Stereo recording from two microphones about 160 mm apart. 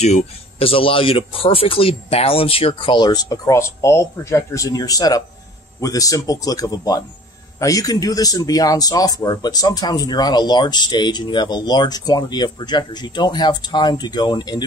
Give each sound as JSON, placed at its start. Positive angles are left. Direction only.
{"t": 0.0, "sound": "speech", "side_deg": 40}